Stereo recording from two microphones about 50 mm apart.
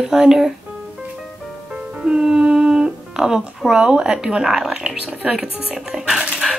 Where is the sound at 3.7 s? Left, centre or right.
Centre.